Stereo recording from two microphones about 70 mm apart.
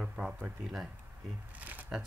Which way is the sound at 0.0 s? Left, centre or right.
Centre.